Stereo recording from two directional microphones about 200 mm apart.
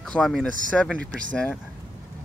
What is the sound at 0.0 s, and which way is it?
Speech, centre (ahead or behind).